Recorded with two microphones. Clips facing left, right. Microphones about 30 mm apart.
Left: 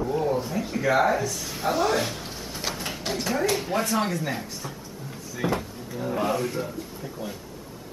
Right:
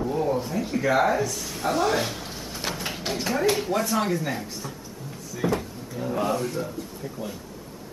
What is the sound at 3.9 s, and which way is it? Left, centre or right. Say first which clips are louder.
Speech: right 1 dB; centre.